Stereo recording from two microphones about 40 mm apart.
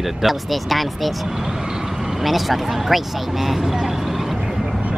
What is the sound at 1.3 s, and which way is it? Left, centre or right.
Speech, centre.